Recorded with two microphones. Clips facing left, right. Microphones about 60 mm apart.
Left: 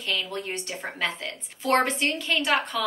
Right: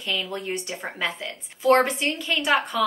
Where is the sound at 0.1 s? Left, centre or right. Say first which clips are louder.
Right 2 dB; centre.